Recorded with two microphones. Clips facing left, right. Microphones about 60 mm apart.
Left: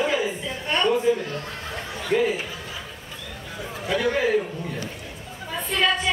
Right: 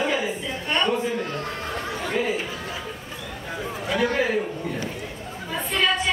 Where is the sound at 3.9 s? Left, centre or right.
Centre.